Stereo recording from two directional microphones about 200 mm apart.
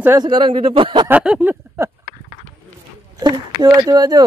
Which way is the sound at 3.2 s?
20° right (ahead or behind).